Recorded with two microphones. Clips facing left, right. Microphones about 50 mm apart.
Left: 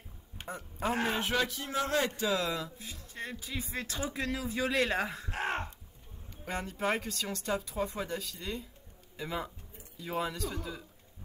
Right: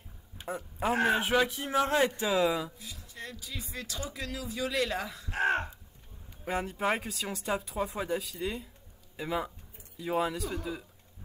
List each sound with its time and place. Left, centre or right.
0.5 s speech: centre
1.2 s speech: centre
1.6 s speech: right
2.8 s a man's voice: left
5.3 s caw: centre
6.4 s speech: centre